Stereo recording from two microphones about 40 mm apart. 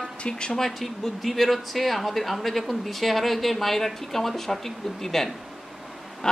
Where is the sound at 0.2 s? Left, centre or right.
Left.